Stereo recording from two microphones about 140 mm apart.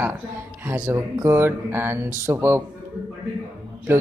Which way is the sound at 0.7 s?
20° right (ahead or behind).